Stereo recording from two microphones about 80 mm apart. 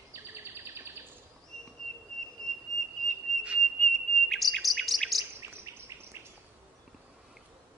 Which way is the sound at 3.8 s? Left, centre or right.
Centre.